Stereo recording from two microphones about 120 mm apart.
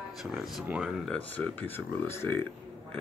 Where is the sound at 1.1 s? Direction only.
15° left (ahead or behind).